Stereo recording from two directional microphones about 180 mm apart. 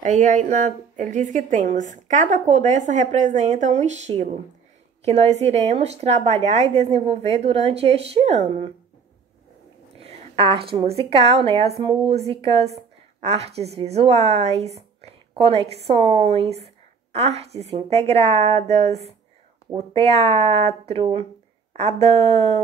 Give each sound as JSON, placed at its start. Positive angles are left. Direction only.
{"t": 0.0, "sound": "a woman's voice", "side_deg": -45}
{"t": 9.9, "sound": "a woman's voice", "side_deg": -35}